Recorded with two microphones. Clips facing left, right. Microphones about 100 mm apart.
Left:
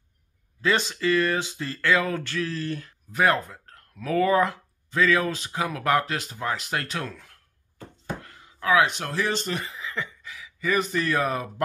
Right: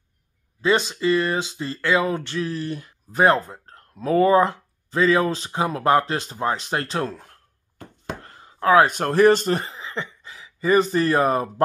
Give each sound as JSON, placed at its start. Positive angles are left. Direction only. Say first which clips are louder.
{"t": 0.6, "sound": "speech", "louder": "right 4 dB", "side_deg": -20}
{"t": 3.1, "sound": "speech", "louder": "right 4 dB", "side_deg": -30}